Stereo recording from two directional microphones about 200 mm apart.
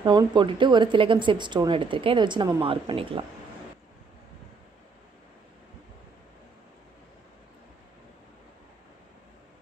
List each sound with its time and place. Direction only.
0.0 s speech: 20° right (ahead or behind)